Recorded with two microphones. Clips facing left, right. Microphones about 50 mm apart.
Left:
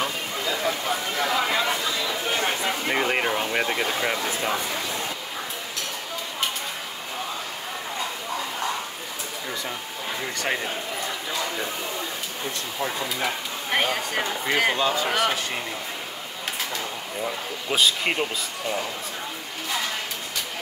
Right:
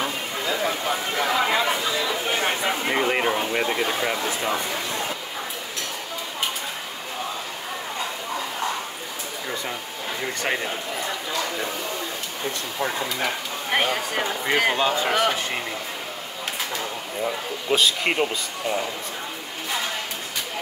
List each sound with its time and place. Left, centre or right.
0.5 s chatter: centre
2.9 s a man's voice: centre
4.4 s speech: centre
10.2 s a man's voice: centre
12.8 s speech: centre
14.8 s speech: right
15.0 s speech: centre
16.7 s speech: centre